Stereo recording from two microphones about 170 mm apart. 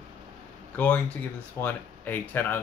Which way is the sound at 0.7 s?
10° left (ahead or behind).